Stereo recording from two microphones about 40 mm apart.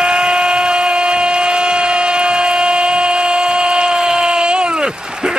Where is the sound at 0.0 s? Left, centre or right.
Right.